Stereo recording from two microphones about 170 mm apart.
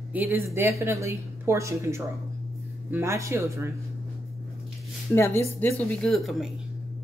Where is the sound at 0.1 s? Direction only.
10° right (ahead or behind).